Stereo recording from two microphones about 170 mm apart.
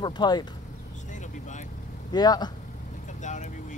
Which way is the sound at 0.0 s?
25° left (ahead or behind).